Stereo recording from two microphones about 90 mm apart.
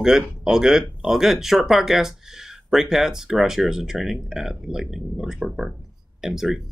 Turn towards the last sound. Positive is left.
turn(degrees=-5)  # may be behind; listen again after turning